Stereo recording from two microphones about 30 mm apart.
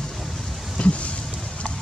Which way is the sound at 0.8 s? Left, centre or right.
Left.